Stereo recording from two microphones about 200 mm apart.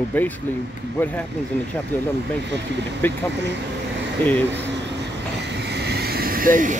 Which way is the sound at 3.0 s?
10° left (ahead or behind).